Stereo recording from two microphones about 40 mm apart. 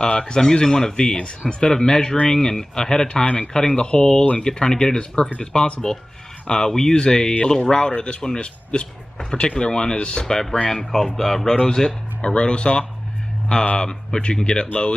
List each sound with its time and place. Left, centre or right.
0.0 s speech: centre
10.7 s speech: centre; by 15.0 s left